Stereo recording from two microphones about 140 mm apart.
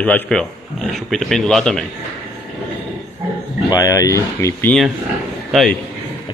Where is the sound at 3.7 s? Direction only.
25° left (ahead or behind).